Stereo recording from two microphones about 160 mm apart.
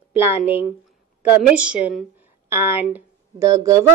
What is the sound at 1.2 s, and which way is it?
A woman's voice, 10° right (ahead or behind).